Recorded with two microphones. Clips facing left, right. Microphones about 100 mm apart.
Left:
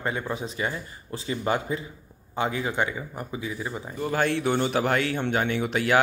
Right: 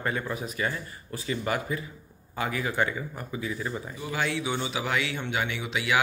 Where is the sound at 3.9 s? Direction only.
50° left (ahead or behind).